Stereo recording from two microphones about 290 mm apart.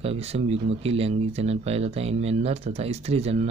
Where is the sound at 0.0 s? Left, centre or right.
Right.